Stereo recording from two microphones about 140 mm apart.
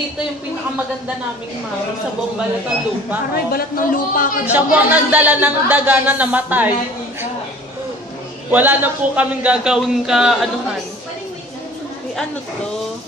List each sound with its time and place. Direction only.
3.5 s a man's voice: 85° left
4.5 s speech: 10° right (ahead or behind)
8.5 s a man's voice: 10° right (ahead or behind)